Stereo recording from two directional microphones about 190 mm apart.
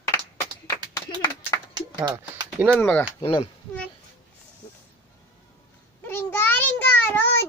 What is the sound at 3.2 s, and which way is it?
Speech, 25° left (ahead or behind).